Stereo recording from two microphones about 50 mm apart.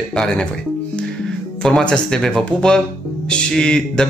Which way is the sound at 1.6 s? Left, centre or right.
Centre.